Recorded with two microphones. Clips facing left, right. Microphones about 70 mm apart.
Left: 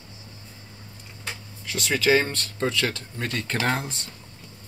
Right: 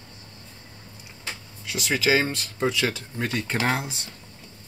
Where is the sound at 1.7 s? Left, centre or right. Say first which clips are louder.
Left 1 dB; centre.